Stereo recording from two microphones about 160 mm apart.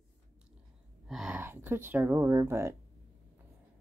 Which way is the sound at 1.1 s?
Centre (ahead or behind).